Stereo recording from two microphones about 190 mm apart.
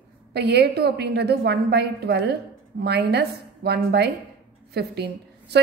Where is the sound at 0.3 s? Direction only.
60° right (ahead or behind).